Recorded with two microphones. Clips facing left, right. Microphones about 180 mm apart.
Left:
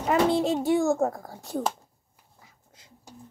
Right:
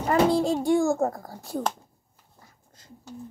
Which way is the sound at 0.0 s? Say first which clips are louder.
Right 1 dB; centre (ahead or behind).